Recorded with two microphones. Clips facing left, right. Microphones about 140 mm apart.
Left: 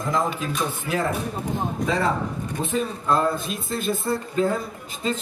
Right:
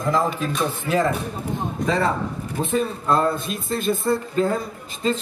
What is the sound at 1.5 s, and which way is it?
Speech, centre (ahead or behind).